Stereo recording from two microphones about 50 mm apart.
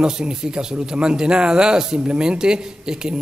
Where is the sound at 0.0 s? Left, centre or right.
Centre.